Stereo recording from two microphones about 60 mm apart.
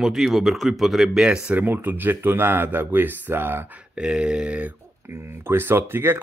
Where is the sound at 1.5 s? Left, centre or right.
Right.